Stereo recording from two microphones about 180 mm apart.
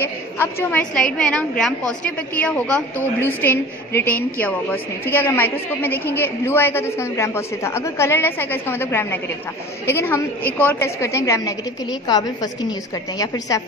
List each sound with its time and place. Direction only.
0.0 s a woman's voice: 10° left (ahead or behind)